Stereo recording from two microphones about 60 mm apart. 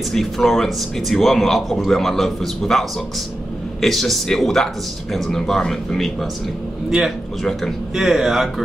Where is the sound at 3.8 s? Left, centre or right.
Centre.